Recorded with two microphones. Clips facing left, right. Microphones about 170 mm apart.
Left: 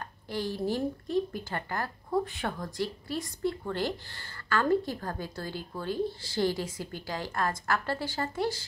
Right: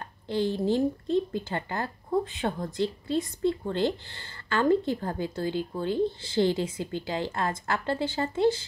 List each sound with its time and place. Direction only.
0.3 s speech: 20° right (ahead or behind)